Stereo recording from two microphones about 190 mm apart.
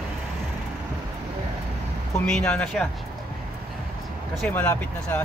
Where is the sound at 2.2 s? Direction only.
5° left (ahead or behind).